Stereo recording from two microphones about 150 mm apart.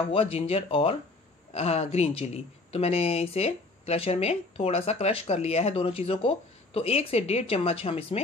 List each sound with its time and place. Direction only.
0.1 s speech: 40° left (ahead or behind)